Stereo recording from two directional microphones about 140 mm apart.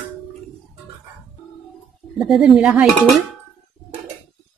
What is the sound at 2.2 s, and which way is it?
Speech, centre (ahead or behind).